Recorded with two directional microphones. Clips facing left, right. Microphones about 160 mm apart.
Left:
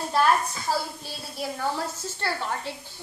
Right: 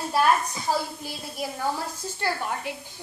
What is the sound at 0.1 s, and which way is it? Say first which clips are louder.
A woman's voice: even; 15° right (ahead or behind).